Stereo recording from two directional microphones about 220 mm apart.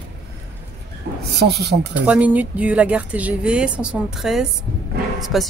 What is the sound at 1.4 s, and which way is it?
Speech, 50° right (ahead or behind).